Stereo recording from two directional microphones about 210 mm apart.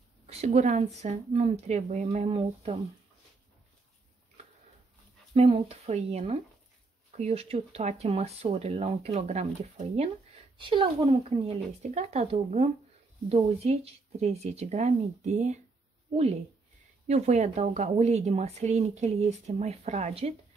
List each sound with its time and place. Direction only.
0.3 s speech: 30° right (ahead or behind)
5.3 s speech: 30° right (ahead or behind)
17.1 s speech: 30° right (ahead or behind)